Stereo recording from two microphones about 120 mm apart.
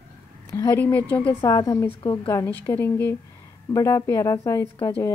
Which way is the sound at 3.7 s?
30° left (ahead or behind).